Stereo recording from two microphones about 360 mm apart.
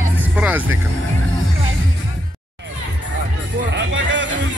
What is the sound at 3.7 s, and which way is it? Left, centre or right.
Music, right.